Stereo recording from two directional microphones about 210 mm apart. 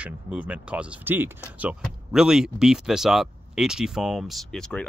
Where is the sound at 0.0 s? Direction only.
5° right (ahead or behind).